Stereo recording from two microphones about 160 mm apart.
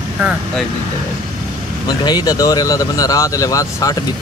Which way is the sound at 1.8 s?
25° left (ahead or behind).